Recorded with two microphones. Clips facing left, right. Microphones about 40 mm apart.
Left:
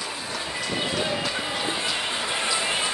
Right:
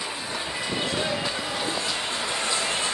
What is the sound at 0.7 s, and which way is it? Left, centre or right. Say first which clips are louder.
Run: left 1 dB; centre.